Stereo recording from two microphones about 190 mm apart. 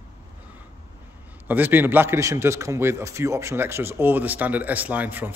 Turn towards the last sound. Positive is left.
turn(degrees=-10)  # may be behind; listen again after turning